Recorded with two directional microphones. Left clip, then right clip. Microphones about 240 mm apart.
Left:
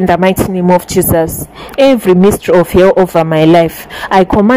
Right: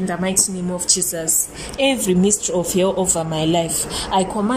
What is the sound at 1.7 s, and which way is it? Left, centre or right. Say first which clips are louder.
Speech: left 11 dB; left.